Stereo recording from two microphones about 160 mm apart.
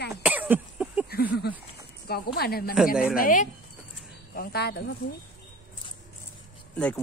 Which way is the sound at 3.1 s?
60° left (ahead or behind).